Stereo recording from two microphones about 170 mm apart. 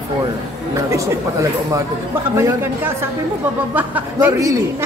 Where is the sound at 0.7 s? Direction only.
15° right (ahead or behind).